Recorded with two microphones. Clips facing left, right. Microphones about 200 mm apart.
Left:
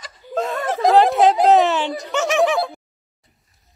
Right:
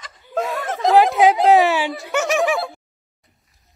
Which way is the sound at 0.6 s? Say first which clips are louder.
Left 5 dB; 30° left (ahead or behind).